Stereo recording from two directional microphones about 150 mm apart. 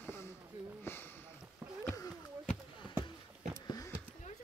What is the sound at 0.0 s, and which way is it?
Sniff, 15° left (ahead or behind).